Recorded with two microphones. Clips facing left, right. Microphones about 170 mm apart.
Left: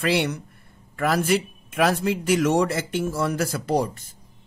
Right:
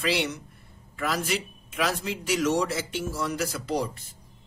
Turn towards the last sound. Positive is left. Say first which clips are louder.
# left 5 dB
turn(degrees=50)  # may be behind; listen again after turning